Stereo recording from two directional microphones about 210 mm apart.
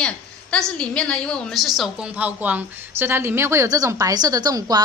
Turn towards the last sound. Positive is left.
turn(degrees=-15)  # may be behind; listen again after turning